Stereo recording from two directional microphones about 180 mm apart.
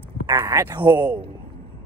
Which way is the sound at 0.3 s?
20° right (ahead or behind).